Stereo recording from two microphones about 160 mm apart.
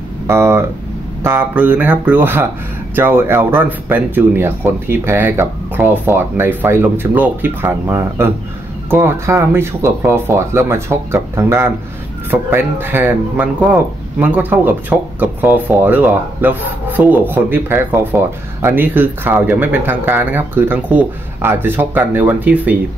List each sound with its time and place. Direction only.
0.3 s speech: 15° right (ahead or behind)